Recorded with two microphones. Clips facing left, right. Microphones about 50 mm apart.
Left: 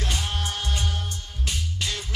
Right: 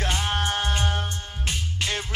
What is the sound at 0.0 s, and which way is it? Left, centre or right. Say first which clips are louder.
Music: right 4 dB; right.